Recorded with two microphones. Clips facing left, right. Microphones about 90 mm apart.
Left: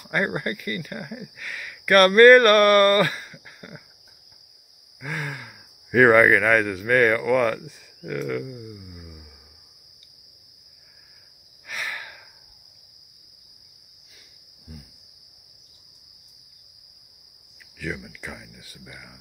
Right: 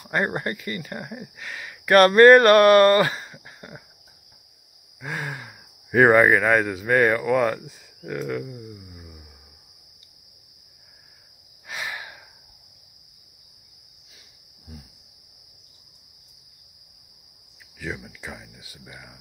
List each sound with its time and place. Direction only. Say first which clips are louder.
0.0 s speech: even; 20° right (ahead or behind)
5.0 s speech: even; 20° right (ahead or behind)
11.6 s a sound: even; 20° right (ahead or behind)
17.7 s speech: left 1 dB; 15° right (ahead or behind)